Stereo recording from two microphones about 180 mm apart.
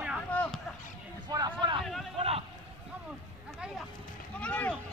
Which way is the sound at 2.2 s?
35° right (ahead or behind).